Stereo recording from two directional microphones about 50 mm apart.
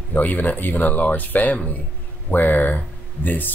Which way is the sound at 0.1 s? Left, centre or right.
Left.